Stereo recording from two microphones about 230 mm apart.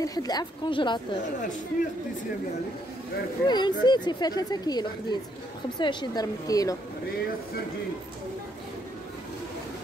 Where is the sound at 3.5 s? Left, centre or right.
Centre.